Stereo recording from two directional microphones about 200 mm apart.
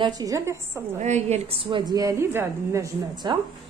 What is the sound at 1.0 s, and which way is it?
A woman's voice, 35° right (ahead or behind).